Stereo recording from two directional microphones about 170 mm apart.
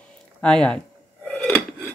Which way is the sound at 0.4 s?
5° left (ahead or behind).